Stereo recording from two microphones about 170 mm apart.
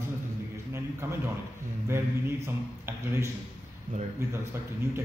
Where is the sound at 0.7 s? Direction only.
15° right (ahead or behind).